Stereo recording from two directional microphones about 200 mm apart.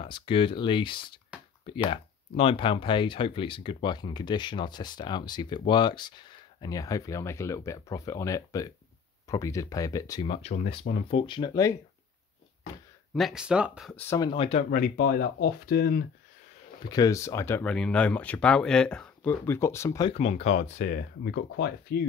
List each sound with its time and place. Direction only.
0.0 s speech: 25° left (ahead or behind)
10.2 s speech: 30° left (ahead or behind)
13.1 s speech: centre (ahead or behind)
13.9 s speech: 15° left (ahead or behind)
14.7 s speech: 45° left (ahead or behind)
16.8 s speech: 20° left (ahead or behind)
20.1 s speech: 30° left (ahead or behind)
20.7 s speech: 50° left (ahead or behind)